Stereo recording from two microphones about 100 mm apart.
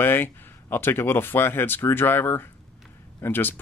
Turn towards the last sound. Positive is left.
turn(degrees=20)  # may be behind; listen again after turning